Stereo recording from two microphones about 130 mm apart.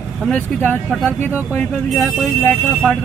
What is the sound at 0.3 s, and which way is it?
Speech, 15° left (ahead or behind).